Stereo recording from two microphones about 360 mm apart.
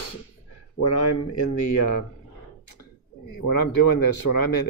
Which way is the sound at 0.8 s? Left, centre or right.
Left.